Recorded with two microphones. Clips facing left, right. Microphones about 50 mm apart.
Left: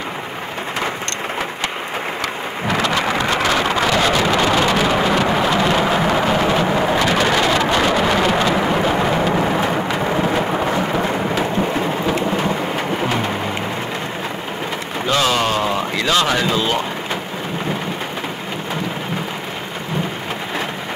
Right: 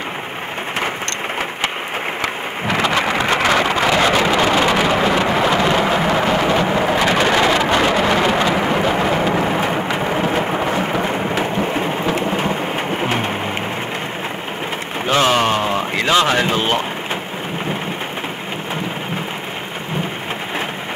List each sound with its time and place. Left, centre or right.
2.2 s thunder: centre
4.3 s thunder: centre
7.1 s a sound: centre
10.1 s thunder: centre
11.3 s thunder: right
15.0 s a sound: right
16.2 s speech: right
16.4 s speech: right